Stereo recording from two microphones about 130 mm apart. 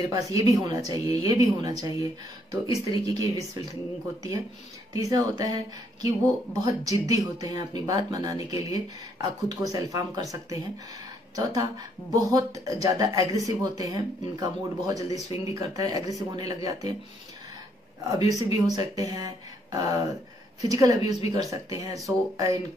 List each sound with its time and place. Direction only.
0.1 s speech: 25° right (ahead or behind)
4.9 s speech: 25° right (ahead or behind)
18.5 s speech: 25° right (ahead or behind)